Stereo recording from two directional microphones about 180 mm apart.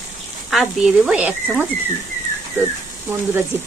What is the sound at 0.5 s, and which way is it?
Speech, centre (ahead or behind).